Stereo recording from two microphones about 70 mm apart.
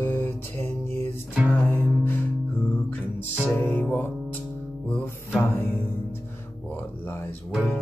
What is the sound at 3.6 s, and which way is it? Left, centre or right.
Music, left.